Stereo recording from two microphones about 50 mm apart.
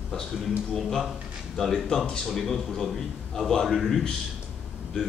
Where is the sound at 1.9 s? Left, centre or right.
Centre.